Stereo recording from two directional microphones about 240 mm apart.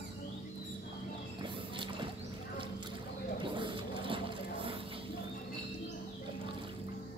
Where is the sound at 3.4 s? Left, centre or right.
Centre.